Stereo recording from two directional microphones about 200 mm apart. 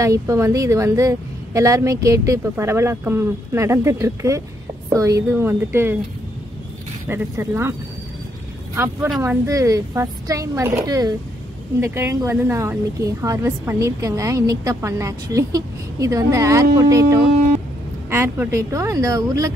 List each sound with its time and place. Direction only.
0.0 s a woman's voice: 15° right (ahead or behind)
7.1 s a woman's voice: 15° right (ahead or behind)
8.7 s a woman's voice: 10° right (ahead or behind)